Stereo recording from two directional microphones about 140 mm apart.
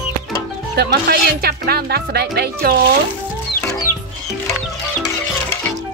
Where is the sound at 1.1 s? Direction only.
90° right.